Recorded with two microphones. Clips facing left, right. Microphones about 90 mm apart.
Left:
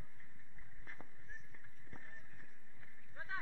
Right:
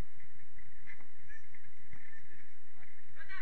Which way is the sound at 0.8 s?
55° left (ahead or behind).